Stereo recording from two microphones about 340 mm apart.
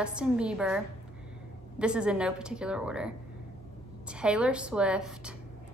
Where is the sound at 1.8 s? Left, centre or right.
Centre.